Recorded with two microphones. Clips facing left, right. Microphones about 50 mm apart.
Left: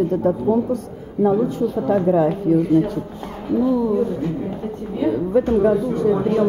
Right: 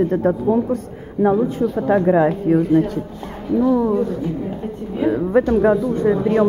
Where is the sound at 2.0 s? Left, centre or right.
Right.